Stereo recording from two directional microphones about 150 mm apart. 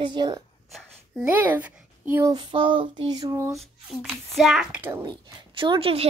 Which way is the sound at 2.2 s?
30° right (ahead or behind).